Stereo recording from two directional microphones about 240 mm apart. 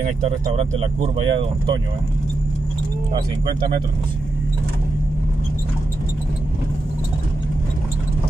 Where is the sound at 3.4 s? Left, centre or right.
Centre.